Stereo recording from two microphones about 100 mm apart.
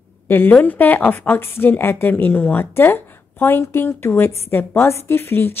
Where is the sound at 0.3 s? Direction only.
15° left (ahead or behind).